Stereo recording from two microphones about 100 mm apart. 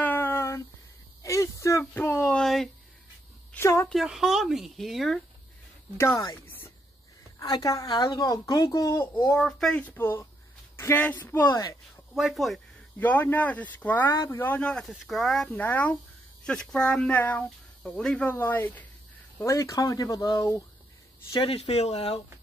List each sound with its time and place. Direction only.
0.0 s a sound: 20° left (ahead or behind)
2.2 s speech: 5° left (ahead or behind)
3.5 s speech: 30° left (ahead or behind)
3.9 s speech: 5° right (ahead or behind)
6.1 s speech: 40° left (ahead or behind)
9.4 s speech: 5° left (ahead or behind)
11.4 s speech: 40° left (ahead or behind)
12.2 s speech: centre (ahead or behind)
13.0 s speech: 20° left (ahead or behind)
14.9 s speech: centre (ahead or behind)
15.5 s speech: 15° left (ahead or behind)
18.3 s speech: 20° left (ahead or behind)
19.4 s speech: 30° left (ahead or behind)
21.4 s speech: 80° left